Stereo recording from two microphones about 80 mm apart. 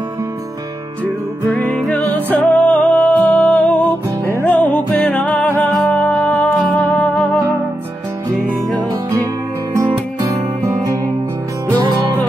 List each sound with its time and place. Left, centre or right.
1.5 s music: centre
6.0 s music: centre
8.4 s music: right